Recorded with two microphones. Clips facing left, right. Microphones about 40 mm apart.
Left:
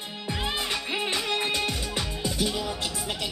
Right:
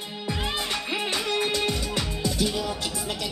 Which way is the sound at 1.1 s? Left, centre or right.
Left.